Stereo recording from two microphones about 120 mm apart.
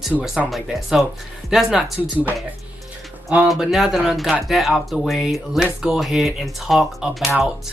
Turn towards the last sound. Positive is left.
turn(degrees=0)  # may be behind; listen again after turning